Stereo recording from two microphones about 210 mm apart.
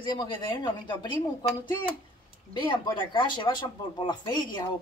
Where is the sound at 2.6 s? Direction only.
20° left (ahead or behind).